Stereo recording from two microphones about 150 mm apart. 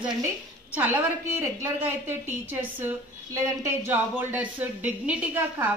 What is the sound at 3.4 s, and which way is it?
Speech, 15° right (ahead or behind).